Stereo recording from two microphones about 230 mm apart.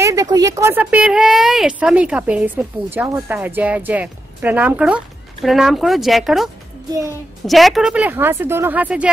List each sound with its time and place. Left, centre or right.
0.0 s a woman's voice: centre